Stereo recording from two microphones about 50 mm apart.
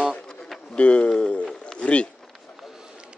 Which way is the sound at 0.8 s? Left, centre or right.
Left.